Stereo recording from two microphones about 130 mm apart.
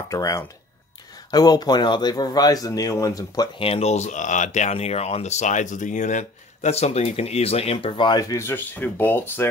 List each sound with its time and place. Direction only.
0.1 s speech: 25° left (ahead or behind)
3.5 s speech: 50° left (ahead or behind); by 9.5 s 15° left (ahead or behind)